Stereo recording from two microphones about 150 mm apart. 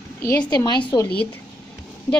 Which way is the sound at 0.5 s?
30° left (ahead or behind).